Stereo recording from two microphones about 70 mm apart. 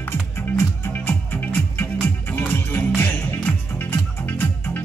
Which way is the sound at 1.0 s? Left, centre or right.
Left.